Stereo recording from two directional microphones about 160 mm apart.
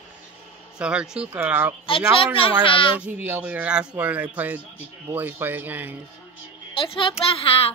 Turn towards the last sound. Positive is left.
turn(degrees=35)  # may be behind; listen again after turning